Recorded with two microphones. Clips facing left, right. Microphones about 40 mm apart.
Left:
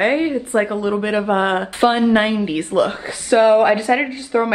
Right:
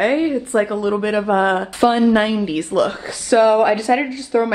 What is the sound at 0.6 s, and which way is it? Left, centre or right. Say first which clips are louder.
Speech: right 1 dB; centre.